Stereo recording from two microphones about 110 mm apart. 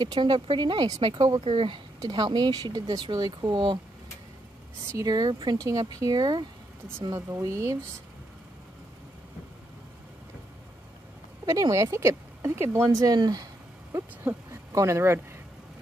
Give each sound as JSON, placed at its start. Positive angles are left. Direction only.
{"t": 0.0, "sound": "speech", "side_deg": -45}
{"t": 1.4, "sound": "speech", "side_deg": -60}
{"t": 2.0, "sound": "speech", "side_deg": -40}
{"t": 4.8, "sound": "speech", "side_deg": -35}
{"t": 7.2, "sound": "speech", "side_deg": -25}
{"t": 11.4, "sound": "speech", "side_deg": -30}
{"t": 12.9, "sound": "speech", "side_deg": -35}
{"t": 13.9, "sound": "speech", "side_deg": -25}